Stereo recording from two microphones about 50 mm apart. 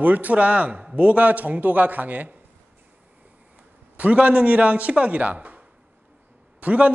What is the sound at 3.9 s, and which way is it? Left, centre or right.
A man's voice, right.